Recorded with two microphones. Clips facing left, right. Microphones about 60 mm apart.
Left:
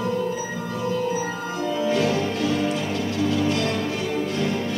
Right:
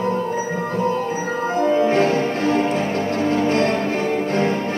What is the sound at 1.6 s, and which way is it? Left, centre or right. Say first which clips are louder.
Music: right 6 dB; right.